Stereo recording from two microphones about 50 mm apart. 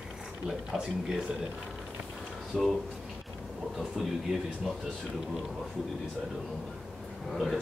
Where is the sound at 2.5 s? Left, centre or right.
Centre.